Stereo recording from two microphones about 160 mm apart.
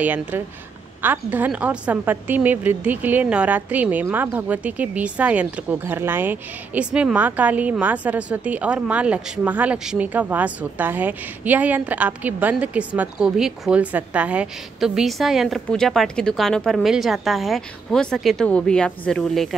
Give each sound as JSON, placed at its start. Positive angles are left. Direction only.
{"t": 0.0, "sound": "a woman's voice", "side_deg": -10}